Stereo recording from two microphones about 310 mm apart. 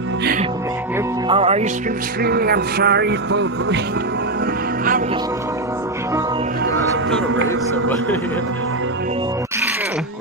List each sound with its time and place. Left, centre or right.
0.2 s music: right
2.2 s music: right